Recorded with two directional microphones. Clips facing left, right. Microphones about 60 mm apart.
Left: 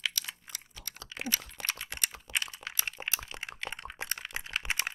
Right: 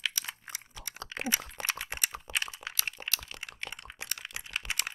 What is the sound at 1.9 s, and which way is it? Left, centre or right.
Typing, centre.